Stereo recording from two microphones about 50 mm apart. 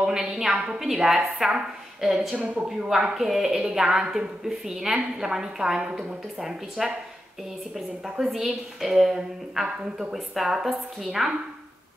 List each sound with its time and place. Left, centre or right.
0.0 s a woman's voice: centre
2.3 s a woman's voice: right
2.9 s a woman's voice: centre
8.2 s a woman's voice: centre